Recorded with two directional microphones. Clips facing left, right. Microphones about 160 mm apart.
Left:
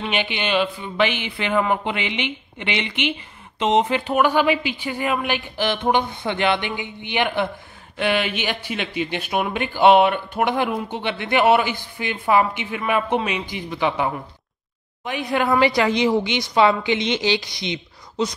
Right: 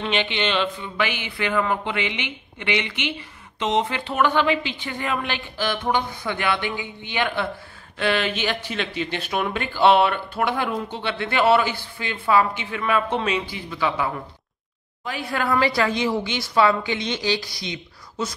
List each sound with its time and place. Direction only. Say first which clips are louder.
0.0 s a man's voice: right 1 dB; 10° left (ahead or behind)